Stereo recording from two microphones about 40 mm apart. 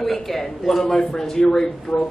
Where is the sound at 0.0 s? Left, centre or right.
Centre.